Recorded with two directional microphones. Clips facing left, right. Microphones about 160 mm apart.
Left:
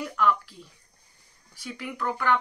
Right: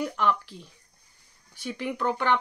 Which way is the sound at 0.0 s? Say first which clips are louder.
Left 1 dB; 25° right (ahead or behind).